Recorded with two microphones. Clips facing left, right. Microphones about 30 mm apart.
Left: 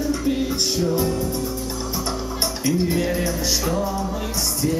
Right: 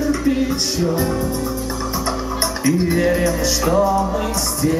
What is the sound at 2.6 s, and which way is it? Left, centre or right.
Music, centre.